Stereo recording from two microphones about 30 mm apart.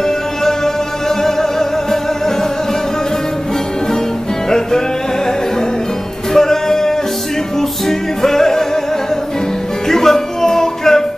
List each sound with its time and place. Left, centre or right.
0.0 s music: centre
4.5 s music: centre
6.3 s music: centre
8.2 s music: centre
9.8 s music: centre